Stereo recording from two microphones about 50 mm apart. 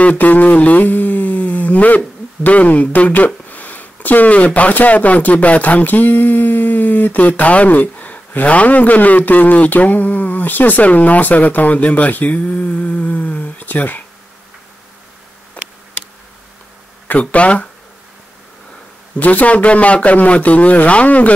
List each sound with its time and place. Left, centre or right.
0.0 s a sound: left
15.6 s insect: left
17.1 s a man's voice: left
19.1 s a man's voice: left